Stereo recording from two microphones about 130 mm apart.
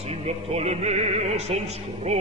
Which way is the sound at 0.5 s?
55° right (ahead or behind).